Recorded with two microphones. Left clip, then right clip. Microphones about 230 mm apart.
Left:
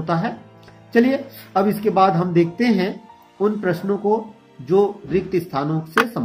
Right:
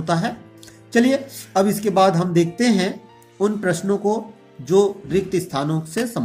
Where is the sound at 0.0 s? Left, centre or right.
Centre.